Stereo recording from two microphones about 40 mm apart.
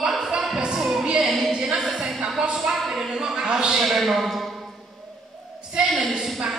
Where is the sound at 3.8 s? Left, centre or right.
Centre.